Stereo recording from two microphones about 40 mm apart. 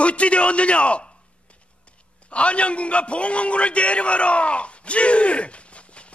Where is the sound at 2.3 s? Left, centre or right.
Left.